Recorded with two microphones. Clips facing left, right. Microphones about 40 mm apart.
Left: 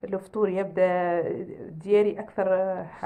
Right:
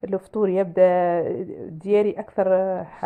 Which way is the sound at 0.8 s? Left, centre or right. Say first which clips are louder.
Right 6 dB; right.